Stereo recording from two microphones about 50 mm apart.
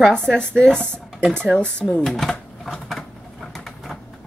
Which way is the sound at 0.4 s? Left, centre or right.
Centre.